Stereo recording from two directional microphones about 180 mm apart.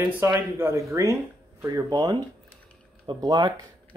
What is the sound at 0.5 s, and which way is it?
Speech, 15° right (ahead or behind).